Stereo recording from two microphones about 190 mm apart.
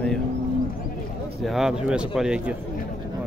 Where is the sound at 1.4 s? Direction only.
Centre (ahead or behind).